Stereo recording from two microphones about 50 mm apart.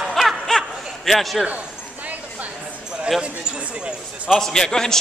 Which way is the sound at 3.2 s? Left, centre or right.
Right.